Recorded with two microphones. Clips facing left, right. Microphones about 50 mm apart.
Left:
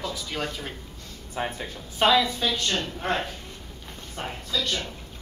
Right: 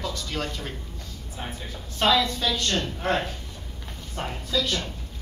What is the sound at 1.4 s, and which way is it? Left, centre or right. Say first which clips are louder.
Speech: left 7 dB; left.